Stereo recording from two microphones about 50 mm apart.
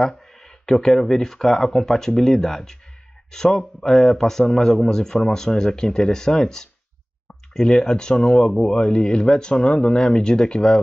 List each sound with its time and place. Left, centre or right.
0.0 s speech: centre